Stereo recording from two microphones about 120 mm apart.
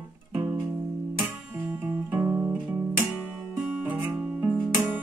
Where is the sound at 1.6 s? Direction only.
10° right (ahead or behind).